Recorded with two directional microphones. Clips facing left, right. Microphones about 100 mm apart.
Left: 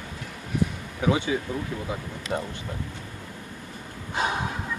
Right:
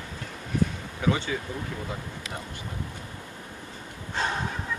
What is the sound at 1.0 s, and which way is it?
Speech, 15° left (ahead or behind).